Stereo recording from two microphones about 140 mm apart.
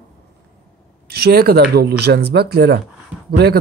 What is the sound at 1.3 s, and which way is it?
Speech, 90° right.